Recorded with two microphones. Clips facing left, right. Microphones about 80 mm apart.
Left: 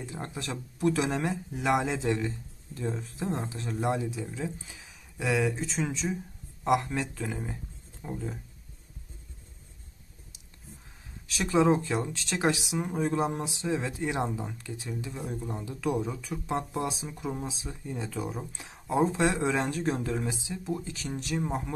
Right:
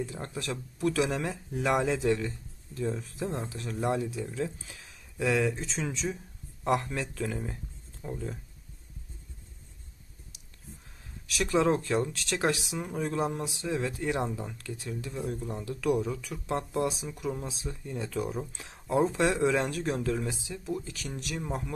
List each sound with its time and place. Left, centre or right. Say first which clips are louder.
0.0 s speech: right 2 dB; left
1.6 s speech: right 1 dB; centre
5.8 s speech: left 2 dB; centre
11.2 s speech: right 1 dB; left
11.5 s speech: left 2 dB; centre